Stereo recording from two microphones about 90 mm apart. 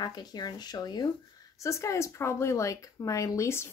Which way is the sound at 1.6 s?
35° left (ahead or behind).